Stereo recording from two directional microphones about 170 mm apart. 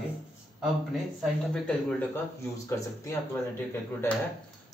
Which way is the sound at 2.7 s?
15° left (ahead or behind).